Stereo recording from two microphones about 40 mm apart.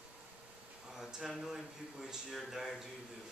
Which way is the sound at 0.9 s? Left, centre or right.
Centre.